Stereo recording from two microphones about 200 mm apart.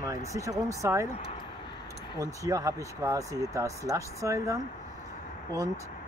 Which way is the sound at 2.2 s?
15° right (ahead or behind).